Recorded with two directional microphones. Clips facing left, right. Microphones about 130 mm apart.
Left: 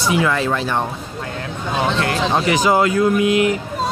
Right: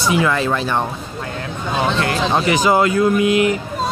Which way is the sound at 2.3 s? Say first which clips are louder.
Right 1 dB; 25° right (ahead or behind).